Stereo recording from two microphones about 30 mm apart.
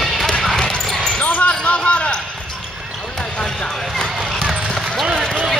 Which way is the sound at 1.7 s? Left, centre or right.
Left.